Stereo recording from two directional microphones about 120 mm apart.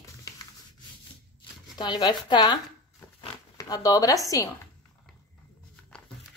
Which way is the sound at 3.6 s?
30° left (ahead or behind).